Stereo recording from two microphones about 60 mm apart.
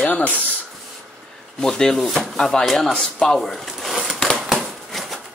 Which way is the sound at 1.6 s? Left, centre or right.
Centre.